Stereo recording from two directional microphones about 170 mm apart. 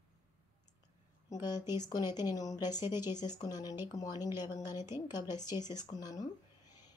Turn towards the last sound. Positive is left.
turn(degrees=20)  # may be behind; listen again after turning